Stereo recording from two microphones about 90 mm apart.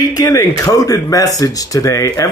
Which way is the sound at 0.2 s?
40° left (ahead or behind).